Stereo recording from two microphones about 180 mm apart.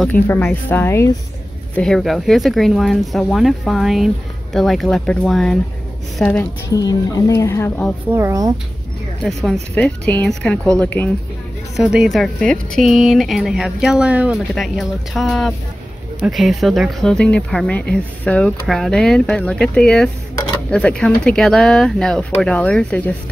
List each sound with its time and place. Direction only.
0.0 s a woman's voice: 10° left (ahead or behind)
1.8 s a woman's voice: 5° left (ahead or behind)
6.7 s a woman's voice: 20° left (ahead or behind)
8.1 s speech: 15° right (ahead or behind)
9.2 s a woman's voice: centre (ahead or behind)